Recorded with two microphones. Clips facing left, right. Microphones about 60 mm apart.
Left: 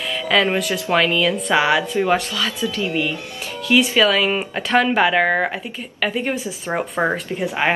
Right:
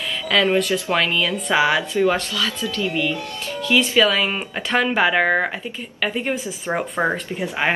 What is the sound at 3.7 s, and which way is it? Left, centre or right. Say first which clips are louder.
Speech: left 1 dB; centre.